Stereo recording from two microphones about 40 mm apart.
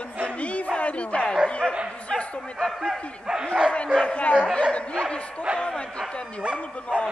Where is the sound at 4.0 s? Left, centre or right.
Left.